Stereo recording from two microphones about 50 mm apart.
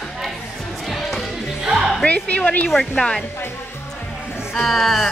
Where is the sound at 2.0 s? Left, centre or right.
Left.